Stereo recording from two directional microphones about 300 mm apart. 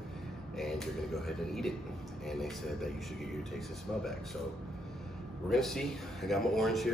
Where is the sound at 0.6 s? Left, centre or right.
Centre.